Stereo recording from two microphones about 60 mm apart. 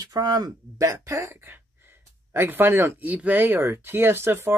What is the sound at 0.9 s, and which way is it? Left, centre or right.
Speech, right.